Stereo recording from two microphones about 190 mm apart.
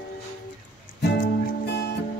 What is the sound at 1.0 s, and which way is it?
Music, 60° left (ahead or behind).